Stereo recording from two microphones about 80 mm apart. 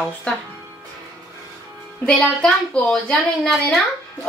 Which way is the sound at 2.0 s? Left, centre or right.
Centre.